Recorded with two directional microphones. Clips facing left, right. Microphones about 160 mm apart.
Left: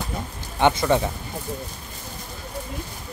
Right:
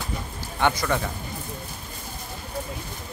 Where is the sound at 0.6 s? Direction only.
20° left (ahead or behind).